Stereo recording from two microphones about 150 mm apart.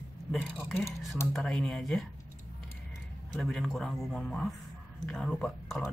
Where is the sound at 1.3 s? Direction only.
5° left (ahead or behind).